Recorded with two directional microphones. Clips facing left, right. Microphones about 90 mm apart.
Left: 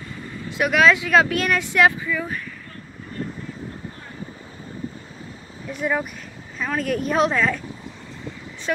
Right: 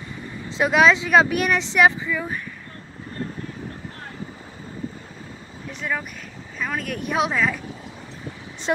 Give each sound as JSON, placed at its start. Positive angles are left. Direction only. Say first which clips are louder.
{"t": 0.5, "sound": "speech", "louder": "even", "side_deg": -25}
{"t": 5.8, "sound": "a woman's voice", "louder": "left 4 dB", "side_deg": 10}
{"t": 8.7, "sound": "speech", "louder": "right 2 dB", "side_deg": -25}